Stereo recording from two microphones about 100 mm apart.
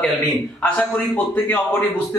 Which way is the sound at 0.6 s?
15° left (ahead or behind).